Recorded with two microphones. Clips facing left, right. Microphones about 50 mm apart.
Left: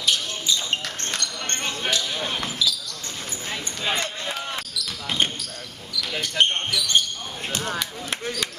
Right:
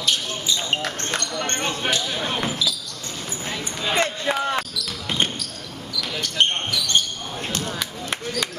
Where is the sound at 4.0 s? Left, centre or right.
Right.